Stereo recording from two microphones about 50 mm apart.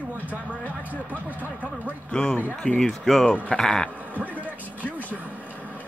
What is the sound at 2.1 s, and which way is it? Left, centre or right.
Speech, centre.